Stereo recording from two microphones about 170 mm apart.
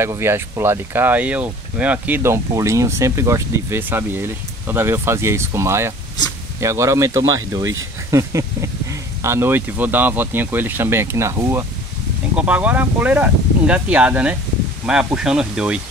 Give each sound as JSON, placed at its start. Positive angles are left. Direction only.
{"t": 0.0, "sound": "speech", "side_deg": -15}